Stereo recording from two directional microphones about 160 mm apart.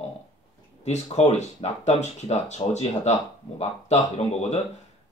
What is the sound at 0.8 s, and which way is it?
Speech, 45° left (ahead or behind).